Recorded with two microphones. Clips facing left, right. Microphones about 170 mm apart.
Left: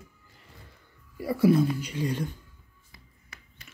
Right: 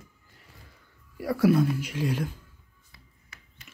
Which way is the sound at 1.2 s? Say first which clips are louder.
Even; 85° right.